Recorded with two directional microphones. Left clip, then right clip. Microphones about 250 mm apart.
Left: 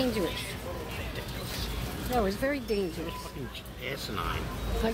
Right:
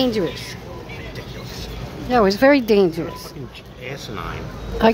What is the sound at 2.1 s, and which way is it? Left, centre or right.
Speech, right.